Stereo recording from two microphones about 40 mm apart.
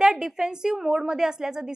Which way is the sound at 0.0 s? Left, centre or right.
Centre.